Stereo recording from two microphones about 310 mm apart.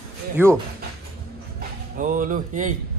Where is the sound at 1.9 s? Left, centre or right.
Right.